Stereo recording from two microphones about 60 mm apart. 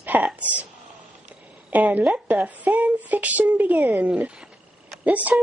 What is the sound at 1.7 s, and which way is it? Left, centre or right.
A woman's voice, right.